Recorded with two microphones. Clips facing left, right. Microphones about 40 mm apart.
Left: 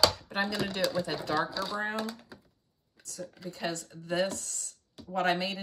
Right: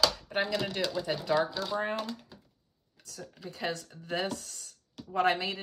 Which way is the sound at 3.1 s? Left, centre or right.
Right.